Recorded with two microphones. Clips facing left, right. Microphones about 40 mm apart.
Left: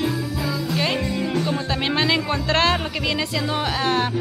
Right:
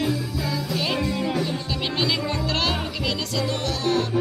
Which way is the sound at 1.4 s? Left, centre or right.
Left.